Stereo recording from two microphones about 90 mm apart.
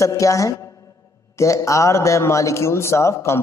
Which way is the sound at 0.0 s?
35° left (ahead or behind).